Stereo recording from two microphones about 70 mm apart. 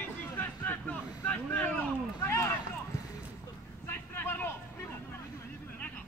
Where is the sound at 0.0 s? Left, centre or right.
Left.